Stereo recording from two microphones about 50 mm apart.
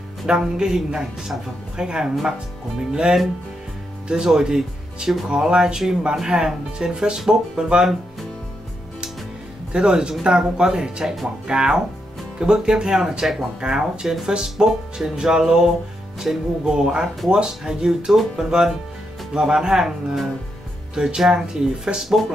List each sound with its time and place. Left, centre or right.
0.3 s speech: centre
9.7 s speech: centre